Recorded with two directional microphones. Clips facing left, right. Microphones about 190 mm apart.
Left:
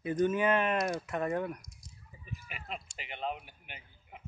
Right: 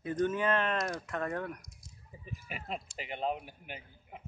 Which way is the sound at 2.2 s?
40° right (ahead or behind).